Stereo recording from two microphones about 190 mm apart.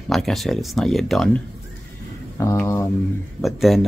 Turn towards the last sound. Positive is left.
turn(degrees=0)  # may be behind; listen again after turning